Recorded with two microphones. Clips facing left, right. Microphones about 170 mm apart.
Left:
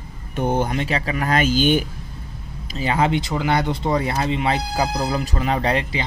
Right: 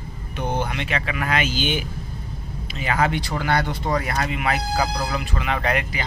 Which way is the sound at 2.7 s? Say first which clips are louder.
Left 3 dB; 30° left (ahead or behind).